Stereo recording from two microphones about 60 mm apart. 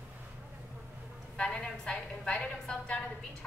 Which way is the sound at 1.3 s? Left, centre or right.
Centre.